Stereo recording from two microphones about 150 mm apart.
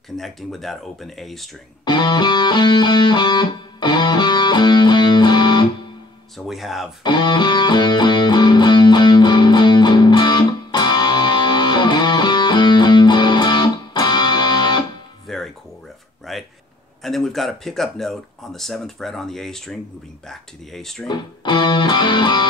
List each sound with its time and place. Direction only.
0.1 s speech: centre (ahead or behind)
1.9 s music: 30° left (ahead or behind)
6.3 s speech: centre (ahead or behind)
7.0 s music: 30° left (ahead or behind)
15.2 s music: centre (ahead or behind)
16.3 s a sound: centre (ahead or behind)
17.0 s speech: centre (ahead or behind)
21.1 s music: 30° left (ahead or behind)